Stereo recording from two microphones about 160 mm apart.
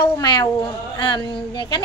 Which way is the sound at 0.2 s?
25° left (ahead or behind).